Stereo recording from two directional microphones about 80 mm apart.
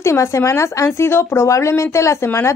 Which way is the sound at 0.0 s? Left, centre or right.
Left.